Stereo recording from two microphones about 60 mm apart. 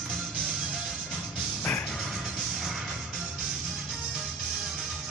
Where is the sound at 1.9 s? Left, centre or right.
Centre.